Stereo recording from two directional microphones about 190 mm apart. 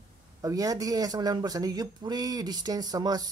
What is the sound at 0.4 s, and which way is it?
Speech, 20° right (ahead or behind).